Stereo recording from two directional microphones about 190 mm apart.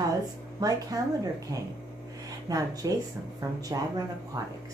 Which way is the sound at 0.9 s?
20° right (ahead or behind).